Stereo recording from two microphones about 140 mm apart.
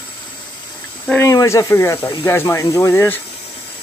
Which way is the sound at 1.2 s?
20° left (ahead or behind).